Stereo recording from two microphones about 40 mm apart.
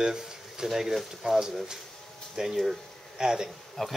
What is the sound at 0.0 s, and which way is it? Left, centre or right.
Speech, centre.